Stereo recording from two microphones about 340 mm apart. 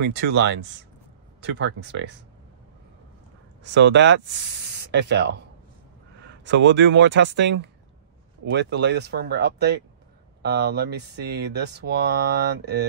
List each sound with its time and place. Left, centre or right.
1.4 s speech: right
3.6 s speech: right